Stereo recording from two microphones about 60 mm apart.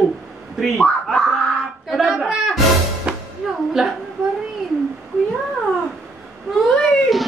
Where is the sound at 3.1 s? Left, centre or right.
Centre.